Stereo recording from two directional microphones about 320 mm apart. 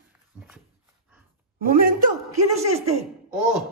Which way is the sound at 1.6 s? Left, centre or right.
Right.